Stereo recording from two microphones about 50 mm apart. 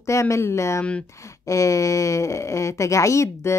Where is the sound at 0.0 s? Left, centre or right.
Left.